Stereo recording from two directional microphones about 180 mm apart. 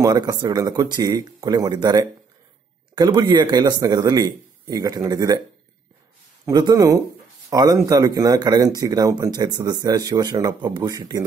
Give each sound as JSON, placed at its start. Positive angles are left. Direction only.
{"t": 0.0, "sound": "speech", "side_deg": -20}
{"t": 6.4, "sound": "speech", "side_deg": -20}